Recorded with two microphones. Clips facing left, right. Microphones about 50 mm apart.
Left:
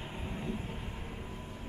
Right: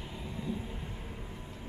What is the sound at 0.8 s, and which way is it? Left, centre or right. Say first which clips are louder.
Vehicle: left 1 dB; centre.